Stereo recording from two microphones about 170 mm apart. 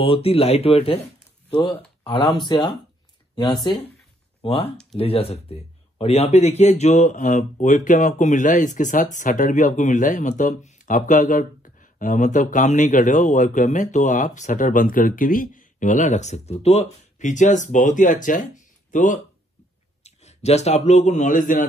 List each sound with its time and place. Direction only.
0.0 s speech: 35° left (ahead or behind)
1.6 s speech: 25° left (ahead or behind)
4.4 s a man's voice: 35° left (ahead or behind); by 21.6 s 50° left (ahead or behind)